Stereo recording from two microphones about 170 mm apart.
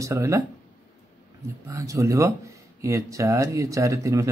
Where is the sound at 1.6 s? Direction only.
15° right (ahead or behind).